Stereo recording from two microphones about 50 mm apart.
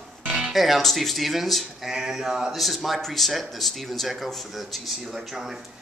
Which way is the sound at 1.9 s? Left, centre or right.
Centre.